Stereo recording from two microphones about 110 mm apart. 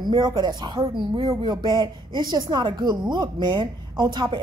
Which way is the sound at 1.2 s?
40° right (ahead or behind).